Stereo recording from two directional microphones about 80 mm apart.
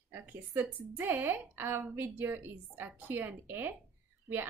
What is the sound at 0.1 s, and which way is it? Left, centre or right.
A woman's voice, right.